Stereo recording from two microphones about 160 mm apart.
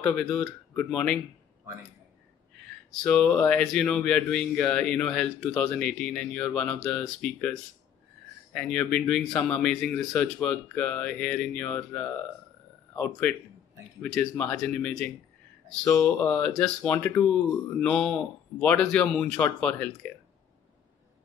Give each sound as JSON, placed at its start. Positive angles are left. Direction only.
{"t": 0.0, "sound": "speech", "side_deg": 5}
{"t": 3.0, "sound": "speech", "side_deg": 10}
{"t": 8.5, "sound": "speech", "side_deg": 10}